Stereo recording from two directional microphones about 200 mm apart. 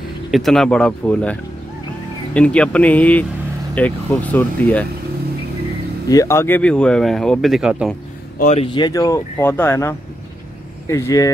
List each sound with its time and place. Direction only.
0.3 s speech: centre (ahead or behind)
6.0 s speech: 15° left (ahead or behind); by 7.9 s centre (ahead or behind)
8.4 s speech: 35° left (ahead or behind)
8.7 s speech: 20° left (ahead or behind)